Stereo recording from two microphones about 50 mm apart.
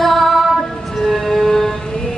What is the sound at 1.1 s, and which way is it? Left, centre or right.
Music, centre.